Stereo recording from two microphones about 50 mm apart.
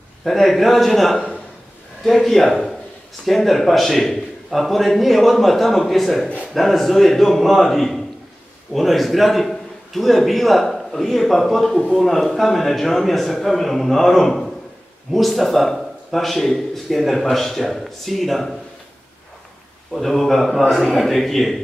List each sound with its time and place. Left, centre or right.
0.2 s speech: centre
6.2 s speech: left
6.5 s a man's voice: centre
19.9 s speech: centre